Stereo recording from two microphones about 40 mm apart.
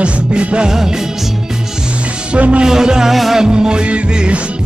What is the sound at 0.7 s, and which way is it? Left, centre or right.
Speech, centre.